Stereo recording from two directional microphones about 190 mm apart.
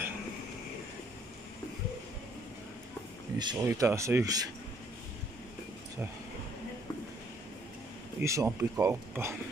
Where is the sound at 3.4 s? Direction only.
20° right (ahead or behind).